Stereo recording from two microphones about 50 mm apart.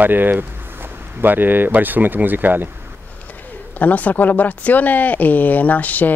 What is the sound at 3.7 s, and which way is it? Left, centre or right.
Speech, left.